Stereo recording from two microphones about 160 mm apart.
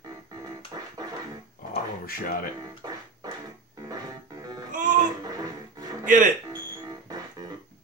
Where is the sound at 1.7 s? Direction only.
65° left (ahead or behind).